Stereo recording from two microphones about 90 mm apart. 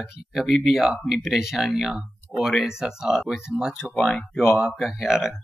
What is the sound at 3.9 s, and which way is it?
Speech, 5° left (ahead or behind).